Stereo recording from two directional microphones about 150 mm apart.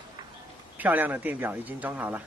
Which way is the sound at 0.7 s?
10° right (ahead or behind).